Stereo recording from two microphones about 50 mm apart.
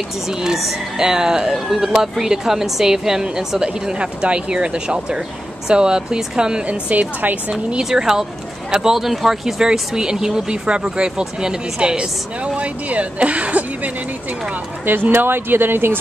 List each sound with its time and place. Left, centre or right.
0.3 s a woman's voice: centre; by 7.3 s right
7.7 s a woman's voice: centre
12.5 s speech: right
14.9 s speech: right